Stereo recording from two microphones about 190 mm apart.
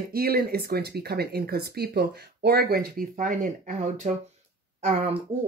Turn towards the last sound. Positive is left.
turn(degrees=-35)  # may be behind; listen again after turning